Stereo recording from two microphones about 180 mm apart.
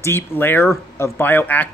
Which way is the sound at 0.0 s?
15° left (ahead or behind).